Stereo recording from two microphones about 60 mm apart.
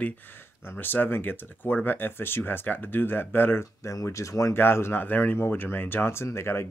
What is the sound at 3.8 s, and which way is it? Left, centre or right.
Speech, left.